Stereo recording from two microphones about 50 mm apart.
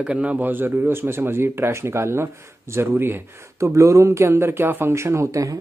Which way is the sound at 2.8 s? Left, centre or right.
Right.